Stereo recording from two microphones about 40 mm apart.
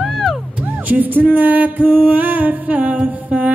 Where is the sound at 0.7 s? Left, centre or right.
Right.